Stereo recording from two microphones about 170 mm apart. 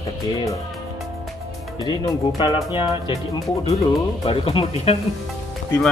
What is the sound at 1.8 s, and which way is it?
Speech, 25° left (ahead or behind).